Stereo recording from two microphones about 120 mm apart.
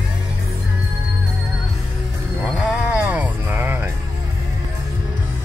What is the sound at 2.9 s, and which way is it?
Music, 10° right (ahead or behind).